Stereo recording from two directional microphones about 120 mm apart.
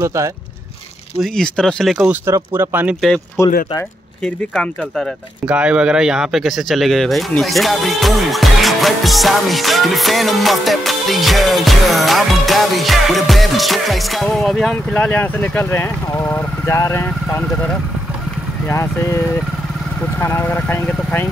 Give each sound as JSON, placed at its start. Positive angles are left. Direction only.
{"t": 0.0, "sound": "speech", "side_deg": -25}
{"t": 1.2, "sound": "speech", "side_deg": 5}
{"t": 2.2, "sound": "speech", "side_deg": -20}
{"t": 3.4, "sound": "speech", "side_deg": 20}
{"t": 4.2, "sound": "speech", "side_deg": 5}
{"t": 5.5, "sound": "speech", "side_deg": -10}
{"t": 18.7, "sound": "speech", "side_deg": 25}